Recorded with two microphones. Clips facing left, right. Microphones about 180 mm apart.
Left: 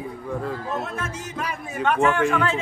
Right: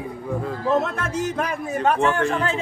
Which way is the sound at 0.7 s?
75° right (ahead or behind).